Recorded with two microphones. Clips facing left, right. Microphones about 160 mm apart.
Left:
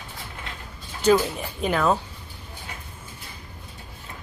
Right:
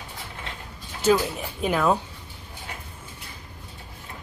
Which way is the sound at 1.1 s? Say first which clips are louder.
Left 2 dB; 5° right (ahead or behind).